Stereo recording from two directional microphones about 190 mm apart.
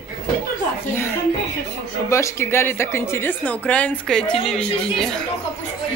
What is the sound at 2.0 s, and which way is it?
A woman's voice, 15° left (ahead or behind).